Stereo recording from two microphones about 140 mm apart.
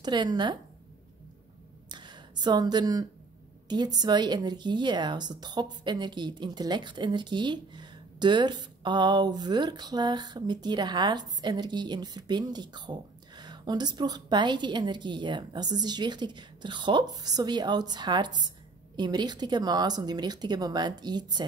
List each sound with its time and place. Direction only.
0.0 s a woman's voice: 30° right (ahead or behind)
1.9 s a sound: 30° right (ahead or behind)
3.6 s a woman's voice: 30° right (ahead or behind)